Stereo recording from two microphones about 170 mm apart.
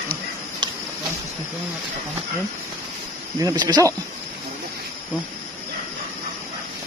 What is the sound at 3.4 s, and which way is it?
Speech, 20° right (ahead or behind).